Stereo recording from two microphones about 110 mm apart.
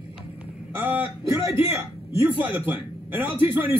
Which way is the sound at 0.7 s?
15° right (ahead or behind).